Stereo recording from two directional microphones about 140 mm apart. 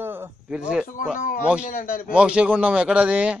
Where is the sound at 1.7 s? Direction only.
80° left.